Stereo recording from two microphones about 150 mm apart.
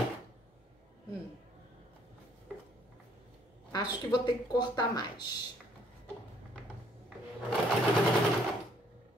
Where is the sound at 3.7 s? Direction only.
30° left (ahead or behind).